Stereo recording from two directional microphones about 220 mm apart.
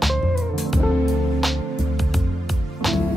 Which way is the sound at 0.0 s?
Centre (ahead or behind).